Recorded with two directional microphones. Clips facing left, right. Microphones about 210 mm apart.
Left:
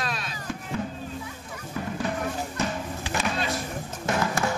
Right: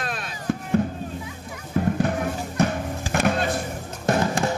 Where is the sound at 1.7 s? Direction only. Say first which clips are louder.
Right 7 dB; 55° right (ahead or behind).